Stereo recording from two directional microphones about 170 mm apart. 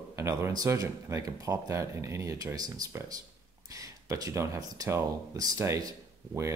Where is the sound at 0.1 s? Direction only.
15° right (ahead or behind).